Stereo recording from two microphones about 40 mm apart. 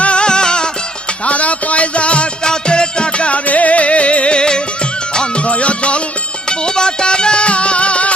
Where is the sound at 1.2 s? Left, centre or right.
Left.